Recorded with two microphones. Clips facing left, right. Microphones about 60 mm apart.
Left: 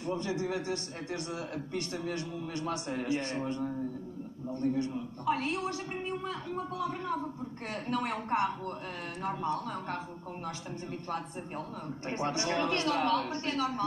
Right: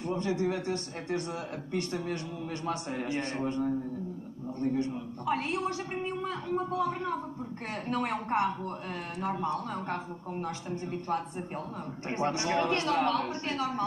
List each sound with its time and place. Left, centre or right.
0.0 s speech: right
12.1 s speech: right